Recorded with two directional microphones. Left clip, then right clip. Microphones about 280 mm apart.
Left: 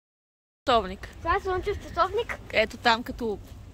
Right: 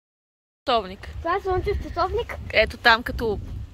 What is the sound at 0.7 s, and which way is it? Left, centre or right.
Speech, centre.